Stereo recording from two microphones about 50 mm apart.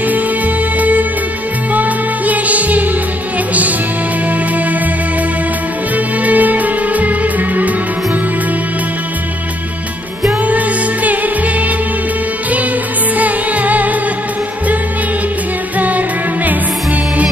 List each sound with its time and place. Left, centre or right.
0.7 s music: right
6.2 s music: right
13.2 s music: right